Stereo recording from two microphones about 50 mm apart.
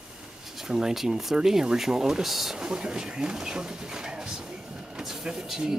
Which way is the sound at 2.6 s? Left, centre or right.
Centre.